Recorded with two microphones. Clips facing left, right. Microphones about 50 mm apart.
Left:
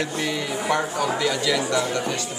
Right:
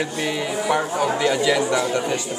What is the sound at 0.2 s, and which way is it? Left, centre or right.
A man's voice, centre.